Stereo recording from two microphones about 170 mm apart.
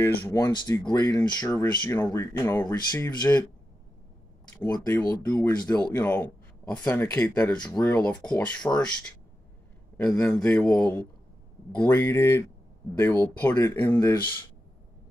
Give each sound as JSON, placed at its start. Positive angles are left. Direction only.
{"t": 0.0, "sound": "speech", "side_deg": 20}
{"t": 4.6, "sound": "speech", "side_deg": 25}